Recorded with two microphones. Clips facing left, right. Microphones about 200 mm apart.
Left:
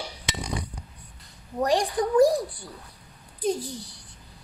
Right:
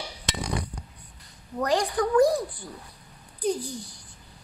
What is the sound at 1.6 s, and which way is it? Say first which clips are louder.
Speech: left 1 dB; 15° left (ahead or behind).